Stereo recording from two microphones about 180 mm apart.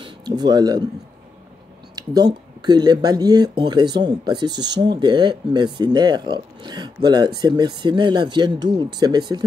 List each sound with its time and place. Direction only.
0.0 s speech: 25° right (ahead or behind)
2.6 s speech: 25° right (ahead or behind)